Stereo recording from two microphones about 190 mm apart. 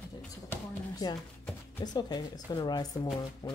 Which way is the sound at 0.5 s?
20° left (ahead or behind).